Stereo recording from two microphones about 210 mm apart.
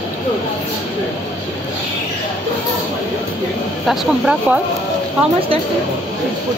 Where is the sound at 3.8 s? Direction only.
5° right (ahead or behind).